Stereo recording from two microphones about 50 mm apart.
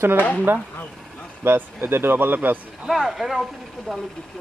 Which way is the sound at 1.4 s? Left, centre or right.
Right.